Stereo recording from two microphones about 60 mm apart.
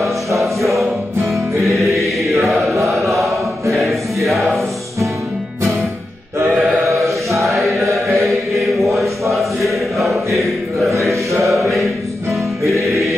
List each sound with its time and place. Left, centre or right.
0.4 s music: centre
2.4 s chant: centre
3.7 s music: centre
6.9 s chant: right
8.1 s chant: centre
11.1 s mantra: right
11.5 s music: centre